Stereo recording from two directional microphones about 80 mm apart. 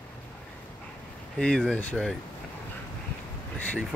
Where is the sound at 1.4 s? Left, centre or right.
Centre.